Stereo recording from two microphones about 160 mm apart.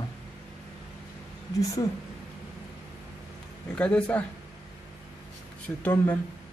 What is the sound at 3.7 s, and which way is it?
Speech, 5° left (ahead or behind).